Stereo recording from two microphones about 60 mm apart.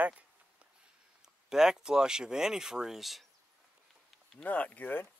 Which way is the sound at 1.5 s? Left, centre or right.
Centre.